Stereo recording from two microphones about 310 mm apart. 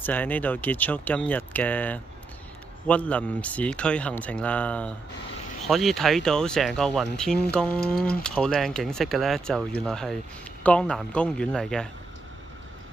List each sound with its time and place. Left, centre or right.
0.0 s speech: centre